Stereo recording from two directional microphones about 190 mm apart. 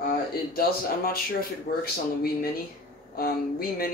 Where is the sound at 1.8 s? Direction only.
55° left (ahead or behind).